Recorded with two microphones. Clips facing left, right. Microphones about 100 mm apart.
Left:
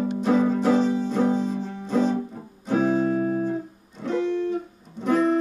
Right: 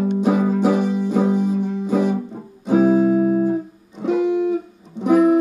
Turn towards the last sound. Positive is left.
turn(degrees=-15)  # may be behind; listen again after turning